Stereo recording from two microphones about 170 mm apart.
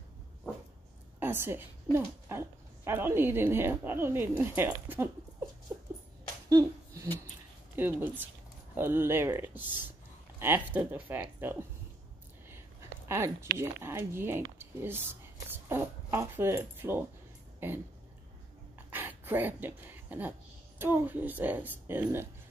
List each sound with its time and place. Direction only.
1.2 s a woman's voice: 15° right (ahead or behind)
6.5 s a sound: 20° right (ahead or behind)
7.7 s a woman's voice: 10° right (ahead or behind)
13.1 s a woman's voice: 15° right (ahead or behind)
18.9 s dog: 10° right (ahead or behind)
20.8 s a woman's voice: 10° right (ahead or behind)